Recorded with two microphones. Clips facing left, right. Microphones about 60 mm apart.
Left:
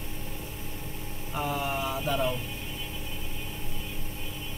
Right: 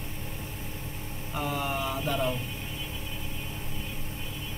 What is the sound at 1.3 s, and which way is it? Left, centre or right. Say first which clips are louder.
Mantra: left 1 dB; centre.